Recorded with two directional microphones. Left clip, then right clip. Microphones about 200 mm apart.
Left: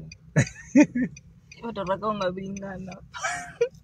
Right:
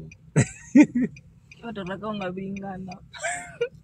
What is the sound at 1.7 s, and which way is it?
Speech, 15° left (ahead or behind).